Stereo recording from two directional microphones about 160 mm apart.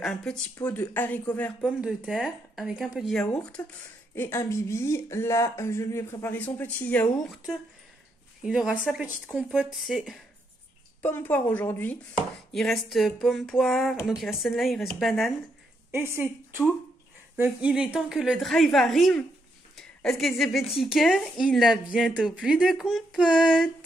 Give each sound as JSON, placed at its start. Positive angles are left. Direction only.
{"t": 0.0, "sound": "chopping", "side_deg": 5}
{"t": 0.6, "sound": "speech", "side_deg": 20}
{"t": 1.8, "sound": "chopping", "side_deg": -5}
{"t": 4.1, "sound": "speech", "side_deg": 15}
{"t": 8.4, "sound": "chopping", "side_deg": -5}
{"t": 11.0, "sound": "chopping", "side_deg": 10}
{"t": 15.9, "sound": "a woman's voice", "side_deg": -15}
{"t": 17.4, "sound": "chopping", "side_deg": -5}